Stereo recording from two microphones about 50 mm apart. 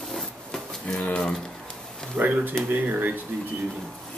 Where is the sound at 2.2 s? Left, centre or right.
Right.